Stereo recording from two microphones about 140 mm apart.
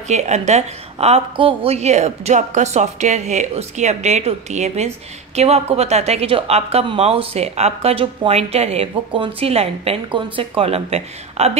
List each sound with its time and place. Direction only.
0.1 s a woman's voice: 55° right (ahead or behind)